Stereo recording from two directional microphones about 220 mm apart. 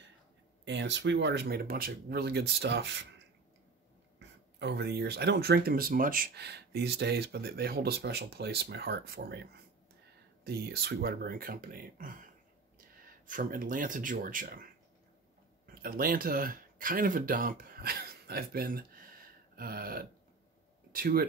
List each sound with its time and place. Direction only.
0.7 s speech: 55° right (ahead or behind)
4.2 s speech: 50° right (ahead or behind)